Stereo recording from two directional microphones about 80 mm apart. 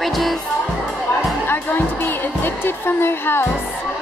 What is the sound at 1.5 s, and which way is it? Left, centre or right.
A woman's voice, left.